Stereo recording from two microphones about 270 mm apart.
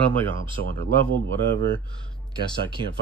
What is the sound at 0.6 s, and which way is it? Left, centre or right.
Speech, right.